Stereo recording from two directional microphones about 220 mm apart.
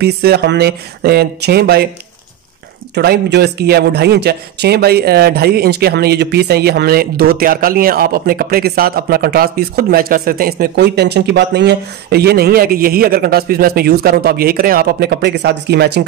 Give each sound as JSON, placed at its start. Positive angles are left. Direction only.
{"t": 0.0, "sound": "speech", "side_deg": -45}
{"t": 2.9, "sound": "speech", "side_deg": -45}